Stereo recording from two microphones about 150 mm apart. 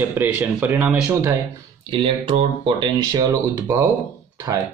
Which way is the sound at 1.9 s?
35° right (ahead or behind).